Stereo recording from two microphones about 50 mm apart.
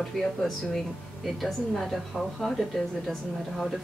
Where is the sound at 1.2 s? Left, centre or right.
Centre.